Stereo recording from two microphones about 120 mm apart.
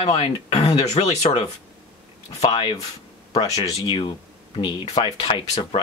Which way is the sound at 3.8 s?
45° left (ahead or behind).